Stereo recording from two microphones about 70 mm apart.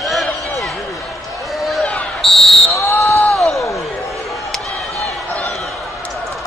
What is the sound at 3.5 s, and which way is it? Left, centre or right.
Basketball bounce, left.